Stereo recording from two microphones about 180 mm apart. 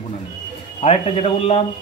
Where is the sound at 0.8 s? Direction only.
35° left (ahead or behind).